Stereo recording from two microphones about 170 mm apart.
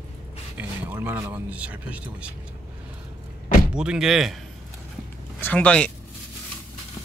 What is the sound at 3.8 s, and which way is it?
Speech, 5° right (ahead or behind).